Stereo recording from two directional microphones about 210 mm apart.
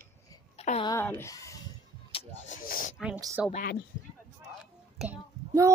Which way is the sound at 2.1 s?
30° left (ahead or behind).